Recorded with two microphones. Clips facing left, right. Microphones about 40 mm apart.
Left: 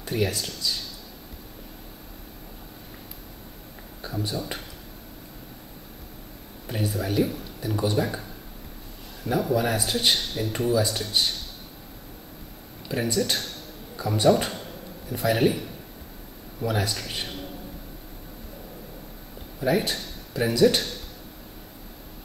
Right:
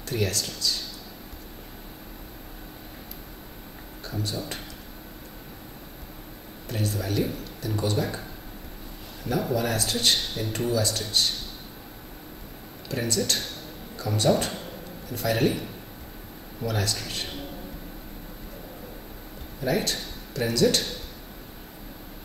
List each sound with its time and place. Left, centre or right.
0.0 s a man's voice: centre
4.1 s a sound: centre
6.7 s a man's voice: centre
9.2 s a man's voice: centre
10.7 s a man's voice: centre
12.8 s a man's voice: centre
14.5 s a sound: centre
15.0 s a man's voice: centre
16.6 s a man's voice: centre
19.6 s a man's voice: centre